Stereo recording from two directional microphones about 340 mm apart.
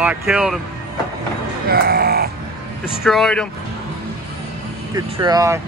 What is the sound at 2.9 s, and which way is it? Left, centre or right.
Speech, centre.